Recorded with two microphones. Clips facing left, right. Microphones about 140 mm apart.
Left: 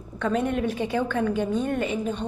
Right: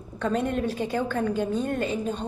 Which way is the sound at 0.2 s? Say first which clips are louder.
Left 1 dB; 35° right (ahead or behind).